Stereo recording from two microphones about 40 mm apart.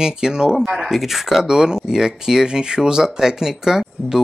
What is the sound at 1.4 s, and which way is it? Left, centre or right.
Speech, centre.